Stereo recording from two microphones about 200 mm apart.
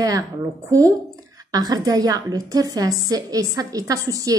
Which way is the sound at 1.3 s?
20° right (ahead or behind).